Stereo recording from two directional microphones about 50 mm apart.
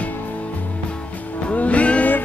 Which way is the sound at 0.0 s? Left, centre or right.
Left.